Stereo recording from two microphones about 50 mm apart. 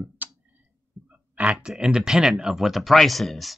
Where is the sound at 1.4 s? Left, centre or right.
Right.